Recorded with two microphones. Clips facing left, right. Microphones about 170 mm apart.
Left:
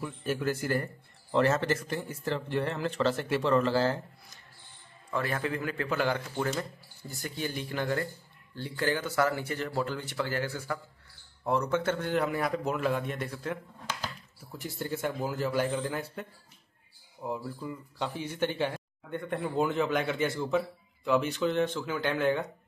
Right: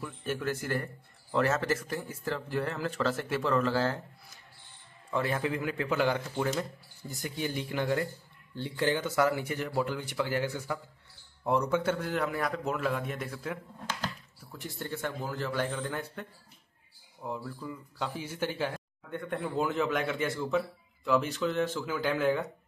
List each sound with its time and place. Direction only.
0.0 s speech: 5° left (ahead or behind)
5.1 s speech: 15° right (ahead or behind)
14.5 s a man's voice: 10° left (ahead or behind)